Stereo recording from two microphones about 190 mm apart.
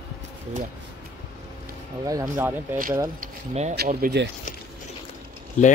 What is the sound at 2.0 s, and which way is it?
Speech, 20° right (ahead or behind).